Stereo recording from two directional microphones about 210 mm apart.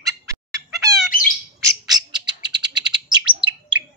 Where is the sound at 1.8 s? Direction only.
20° right (ahead or behind).